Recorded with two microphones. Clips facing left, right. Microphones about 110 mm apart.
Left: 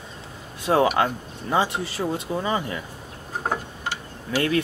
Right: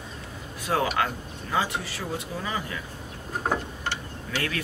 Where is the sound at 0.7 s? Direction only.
30° left (ahead or behind).